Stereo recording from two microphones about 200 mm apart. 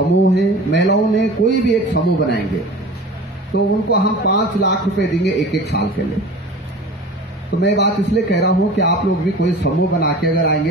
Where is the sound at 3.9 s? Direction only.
60° left (ahead or behind).